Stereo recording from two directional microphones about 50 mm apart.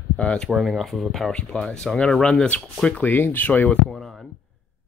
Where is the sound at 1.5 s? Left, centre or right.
Centre.